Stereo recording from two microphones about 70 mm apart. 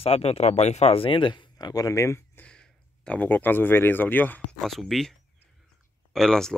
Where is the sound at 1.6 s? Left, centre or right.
Left.